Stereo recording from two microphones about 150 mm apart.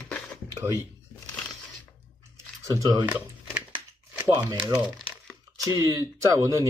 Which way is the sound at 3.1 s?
10° right (ahead or behind).